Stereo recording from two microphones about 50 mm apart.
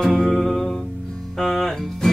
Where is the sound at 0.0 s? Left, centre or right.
Centre.